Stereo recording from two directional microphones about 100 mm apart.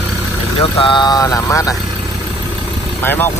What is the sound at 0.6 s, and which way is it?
Speech, 60° left (ahead or behind).